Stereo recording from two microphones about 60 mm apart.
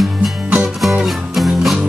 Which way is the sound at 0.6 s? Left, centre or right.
Centre.